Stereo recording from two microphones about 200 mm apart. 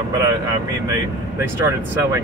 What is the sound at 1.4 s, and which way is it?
Speech, 15° right (ahead or behind).